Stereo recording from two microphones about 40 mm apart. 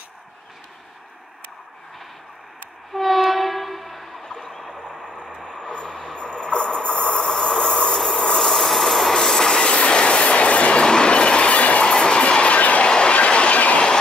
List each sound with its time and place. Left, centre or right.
2.9 s train: centre
4.4 s a sound: centre
5.3 s vehicle: left
7.2 s train: centre; by 12.8 s left
12.8 s train: left